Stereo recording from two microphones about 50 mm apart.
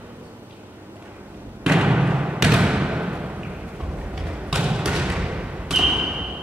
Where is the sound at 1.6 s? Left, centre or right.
Centre.